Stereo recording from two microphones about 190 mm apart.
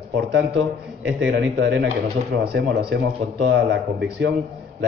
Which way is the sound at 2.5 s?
60° right (ahead or behind).